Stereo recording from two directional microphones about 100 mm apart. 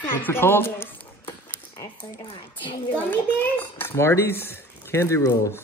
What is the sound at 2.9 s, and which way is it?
A child's voice, 15° left (ahead or behind).